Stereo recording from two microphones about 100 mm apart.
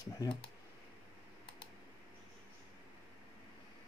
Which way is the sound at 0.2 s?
40° left (ahead or behind).